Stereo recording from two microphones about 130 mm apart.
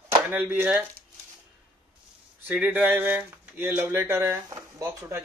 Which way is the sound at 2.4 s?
10° right (ahead or behind).